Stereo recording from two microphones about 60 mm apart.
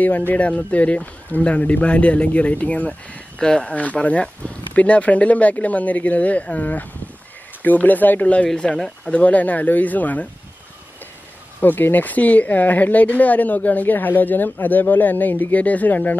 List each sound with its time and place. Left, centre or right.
0.0 s speech: left
8.7 s speech: centre
9.1 s speech: left
11.6 s speech: left